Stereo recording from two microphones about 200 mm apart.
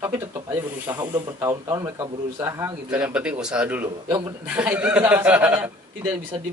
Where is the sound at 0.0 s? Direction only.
15° right (ahead or behind).